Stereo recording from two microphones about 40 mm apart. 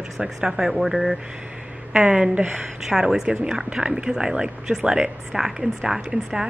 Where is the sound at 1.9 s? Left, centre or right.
Right.